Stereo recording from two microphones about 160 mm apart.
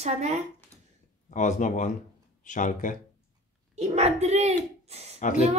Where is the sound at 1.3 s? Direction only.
50° left (ahead or behind).